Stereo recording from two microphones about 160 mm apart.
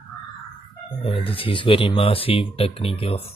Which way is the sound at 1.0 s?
35° left (ahead or behind).